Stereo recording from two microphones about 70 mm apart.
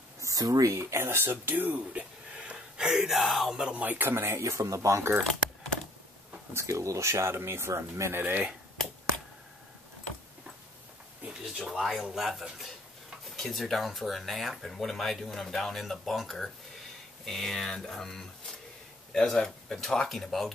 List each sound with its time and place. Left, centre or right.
0.2 s speech: right; by 3.8 s centre
3.8 s speech: right
6.5 s speech: right
8.2 s speech: right
11.2 s a sound: centre
11.7 s speech: centre